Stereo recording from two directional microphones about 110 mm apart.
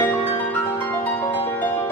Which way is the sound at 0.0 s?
15° left (ahead or behind).